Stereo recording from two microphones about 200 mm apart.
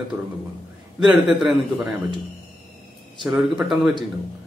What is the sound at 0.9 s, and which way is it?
Speech, centre (ahead or behind).